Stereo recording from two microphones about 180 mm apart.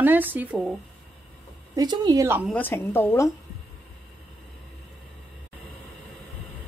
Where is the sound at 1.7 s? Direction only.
25° right (ahead or behind).